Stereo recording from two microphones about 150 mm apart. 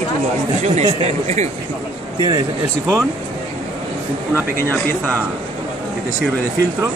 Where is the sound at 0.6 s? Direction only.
50° right (ahead or behind).